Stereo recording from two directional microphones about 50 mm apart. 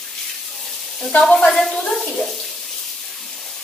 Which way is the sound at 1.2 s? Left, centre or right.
Left.